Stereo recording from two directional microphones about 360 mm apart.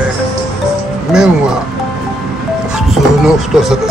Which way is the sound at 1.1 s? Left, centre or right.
Centre.